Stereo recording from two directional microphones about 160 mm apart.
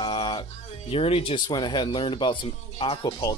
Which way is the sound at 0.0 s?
30° left (ahead or behind).